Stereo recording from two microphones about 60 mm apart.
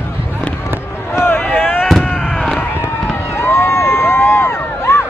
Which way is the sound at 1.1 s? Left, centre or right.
Left.